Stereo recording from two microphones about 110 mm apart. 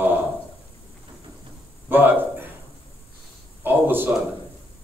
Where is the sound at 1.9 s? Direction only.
15° right (ahead or behind).